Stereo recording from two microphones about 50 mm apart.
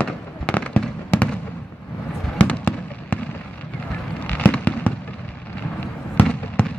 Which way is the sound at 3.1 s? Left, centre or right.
Left.